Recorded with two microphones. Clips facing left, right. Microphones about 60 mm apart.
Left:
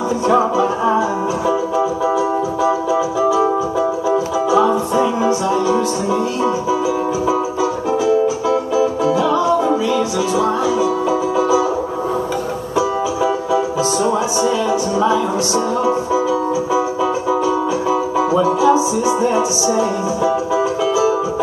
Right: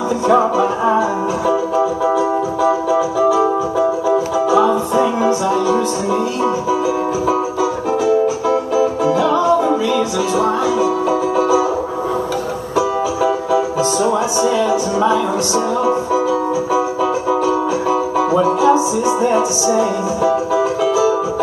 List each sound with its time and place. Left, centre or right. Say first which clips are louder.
0.6 s music: right 1 dB; right
2.1 s music: right 1 dB; right
8.0 s music: right 1 dB; right
9.2 s music: right 2 dB; right
12.7 s music: right 1 dB; right
18.3 s music: right 1 dB; right